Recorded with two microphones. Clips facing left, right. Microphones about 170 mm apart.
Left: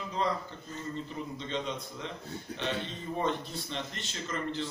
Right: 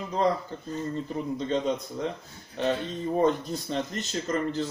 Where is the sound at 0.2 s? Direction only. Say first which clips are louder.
Right 7 dB; 45° right (ahead or behind).